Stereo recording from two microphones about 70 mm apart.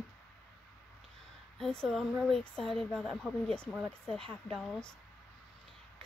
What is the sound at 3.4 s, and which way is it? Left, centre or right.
Speech, centre.